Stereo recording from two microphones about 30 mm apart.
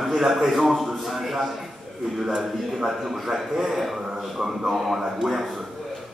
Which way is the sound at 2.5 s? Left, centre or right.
Centre.